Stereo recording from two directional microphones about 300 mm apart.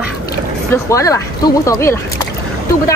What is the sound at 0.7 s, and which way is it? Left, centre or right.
Speech, centre.